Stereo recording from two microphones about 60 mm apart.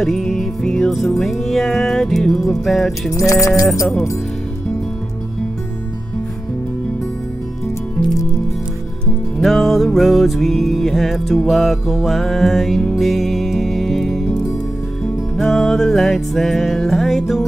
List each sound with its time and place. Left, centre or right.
0.0 s music: centre
3.1 s music: left
9.4 s music: centre
15.5 s music: centre